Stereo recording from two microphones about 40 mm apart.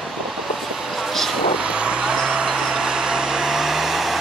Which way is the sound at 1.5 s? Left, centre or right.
Right.